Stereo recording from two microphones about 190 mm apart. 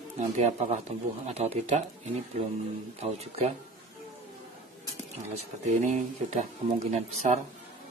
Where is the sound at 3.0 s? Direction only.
35° right (ahead or behind).